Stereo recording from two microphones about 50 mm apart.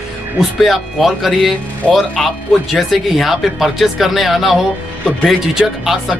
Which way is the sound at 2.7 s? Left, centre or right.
Centre.